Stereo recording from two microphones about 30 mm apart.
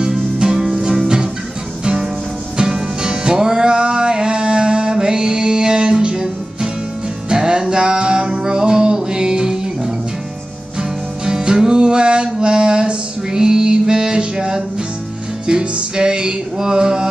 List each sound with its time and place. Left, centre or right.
2.5 s music: right
3.6 s music: right
10.8 s music: right